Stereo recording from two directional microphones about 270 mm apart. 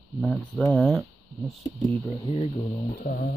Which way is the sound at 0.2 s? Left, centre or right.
Centre.